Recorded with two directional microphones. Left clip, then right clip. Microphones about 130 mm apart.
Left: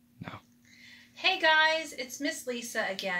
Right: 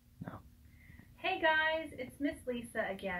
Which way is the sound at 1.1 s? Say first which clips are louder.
Left 7 dB; 20° left (ahead or behind).